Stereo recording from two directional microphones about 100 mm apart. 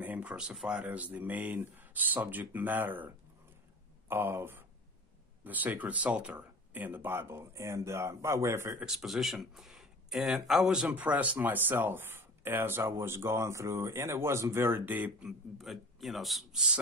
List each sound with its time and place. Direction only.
0.0 s speech: 15° right (ahead or behind)
8.7 s speech: 5° right (ahead or behind)
15.5 s a man's voice: centre (ahead or behind)